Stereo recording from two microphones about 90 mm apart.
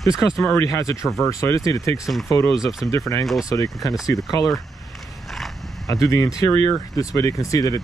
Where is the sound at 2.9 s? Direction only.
35° left (ahead or behind).